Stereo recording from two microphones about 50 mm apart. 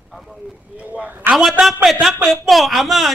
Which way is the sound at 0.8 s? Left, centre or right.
Right.